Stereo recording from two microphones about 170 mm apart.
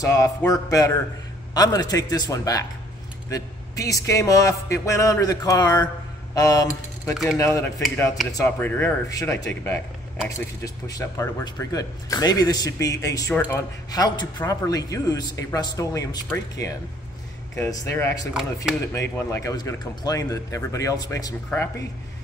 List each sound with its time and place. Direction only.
0.0 s speech: 20° left (ahead or behind)
17.6 s speech: 15° left (ahead or behind)